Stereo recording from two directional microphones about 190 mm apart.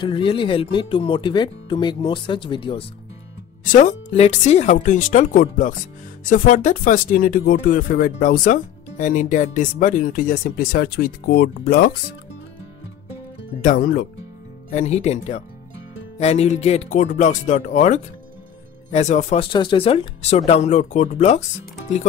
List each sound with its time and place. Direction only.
0.0 s speech: 25° left (ahead or behind)
3.6 s speech: 40° left (ahead or behind)
13.6 s speech: 50° left (ahead or behind)
14.7 s speech: 35° left (ahead or behind)
19.5 s speech: 25° left (ahead or behind)